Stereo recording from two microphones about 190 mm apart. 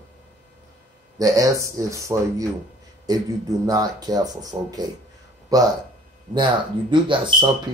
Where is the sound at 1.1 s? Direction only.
20° right (ahead or behind).